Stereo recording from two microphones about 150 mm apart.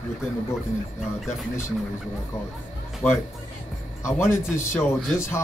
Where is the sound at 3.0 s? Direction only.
10° left (ahead or behind).